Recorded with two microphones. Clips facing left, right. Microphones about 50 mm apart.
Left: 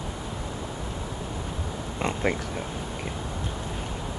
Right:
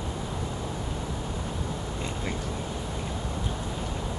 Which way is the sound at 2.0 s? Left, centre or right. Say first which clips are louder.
Left 10 dB; left.